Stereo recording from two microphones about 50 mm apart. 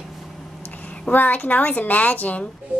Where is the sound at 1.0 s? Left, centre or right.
Left.